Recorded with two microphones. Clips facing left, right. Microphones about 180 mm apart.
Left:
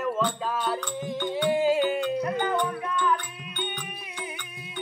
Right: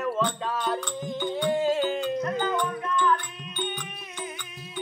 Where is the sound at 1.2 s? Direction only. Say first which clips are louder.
Left 1 dB; 10° left (ahead or behind).